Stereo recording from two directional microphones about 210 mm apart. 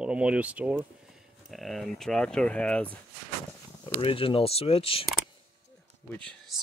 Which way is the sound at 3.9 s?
25° left (ahead or behind).